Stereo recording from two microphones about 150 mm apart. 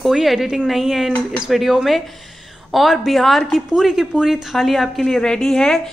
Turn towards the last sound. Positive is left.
turn(degrees=5)  # may be behind; listen again after turning